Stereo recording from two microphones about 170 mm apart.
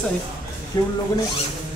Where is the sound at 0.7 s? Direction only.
25° left (ahead or behind).